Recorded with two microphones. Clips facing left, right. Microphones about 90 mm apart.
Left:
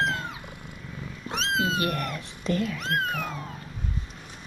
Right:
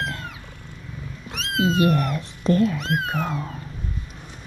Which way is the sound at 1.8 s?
25° right (ahead or behind).